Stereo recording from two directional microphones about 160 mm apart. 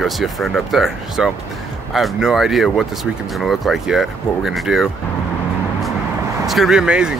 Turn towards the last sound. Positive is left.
turn(degrees=-5)  # may be behind; listen again after turning